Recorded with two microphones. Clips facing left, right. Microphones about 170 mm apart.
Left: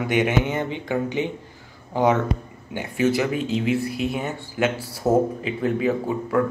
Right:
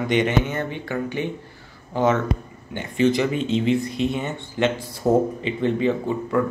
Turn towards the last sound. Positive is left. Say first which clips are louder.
# even
turn(degrees=5)  # may be behind; listen again after turning